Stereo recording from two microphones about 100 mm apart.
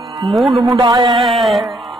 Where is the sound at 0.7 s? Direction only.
45° right (ahead or behind).